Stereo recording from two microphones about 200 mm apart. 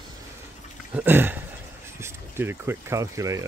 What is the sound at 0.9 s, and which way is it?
Speech, 10° right (ahead or behind).